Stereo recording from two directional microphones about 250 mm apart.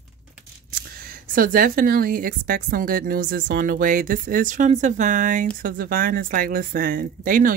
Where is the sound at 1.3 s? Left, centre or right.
Right.